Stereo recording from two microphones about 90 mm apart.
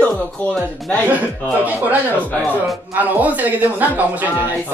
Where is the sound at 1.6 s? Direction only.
15° right (ahead or behind).